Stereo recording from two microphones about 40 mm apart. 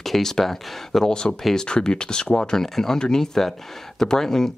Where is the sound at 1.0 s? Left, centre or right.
Centre.